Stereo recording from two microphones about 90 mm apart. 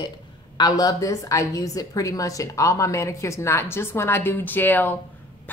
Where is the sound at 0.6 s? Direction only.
45° left (ahead or behind).